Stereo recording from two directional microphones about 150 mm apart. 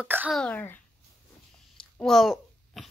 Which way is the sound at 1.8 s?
5° left (ahead or behind).